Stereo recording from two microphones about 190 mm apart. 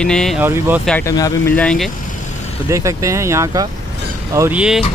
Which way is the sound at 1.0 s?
15° left (ahead or behind).